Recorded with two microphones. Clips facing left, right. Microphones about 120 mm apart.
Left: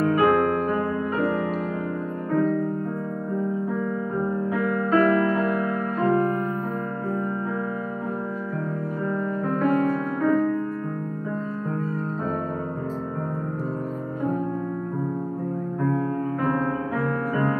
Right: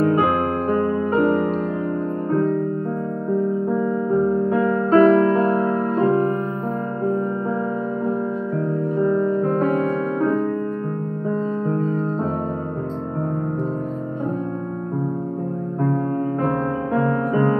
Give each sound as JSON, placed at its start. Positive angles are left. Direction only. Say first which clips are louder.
{"t": 0.1, "sound": "music", "louder": "even", "side_deg": -25}
{"t": 1.2, "sound": "music", "louder": "right 5 dB", "side_deg": -45}
{"t": 4.5, "sound": "music", "louder": "right 5 dB", "side_deg": -25}